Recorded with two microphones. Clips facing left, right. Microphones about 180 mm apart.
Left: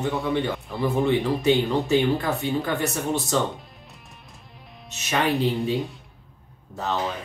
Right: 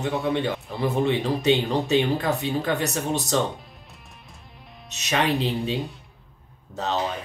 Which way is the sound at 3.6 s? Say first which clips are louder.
Left 1 dB; centre (ahead or behind).